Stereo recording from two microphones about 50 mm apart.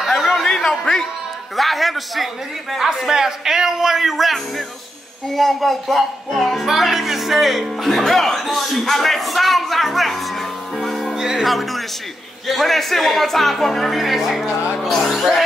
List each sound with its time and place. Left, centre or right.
0.0 s music: centre
1.6 s speech: centre
10.8 s music: centre
11.1 s music: centre
11.4 s speech: centre